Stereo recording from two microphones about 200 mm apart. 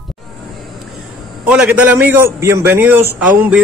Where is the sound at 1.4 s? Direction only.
5° right (ahead or behind).